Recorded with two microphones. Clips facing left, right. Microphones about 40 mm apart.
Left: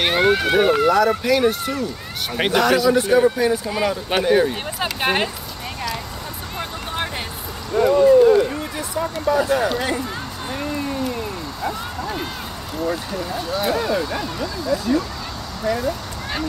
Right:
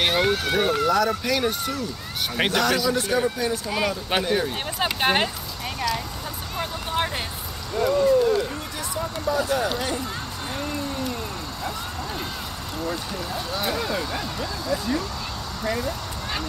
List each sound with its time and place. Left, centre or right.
0.0 s speech: centre
5.0 s speech: centre
7.7 s a sound: centre
9.2 s speech: left
12.8 s speech: centre